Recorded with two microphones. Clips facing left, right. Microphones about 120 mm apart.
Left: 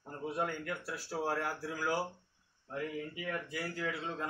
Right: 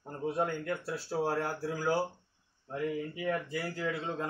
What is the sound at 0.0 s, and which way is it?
A man's voice, 25° right (ahead or behind).